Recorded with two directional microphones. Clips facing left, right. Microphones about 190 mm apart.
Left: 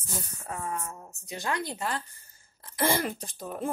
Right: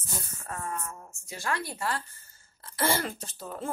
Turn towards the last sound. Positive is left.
turn(degrees=15)  # may be behind; listen again after turning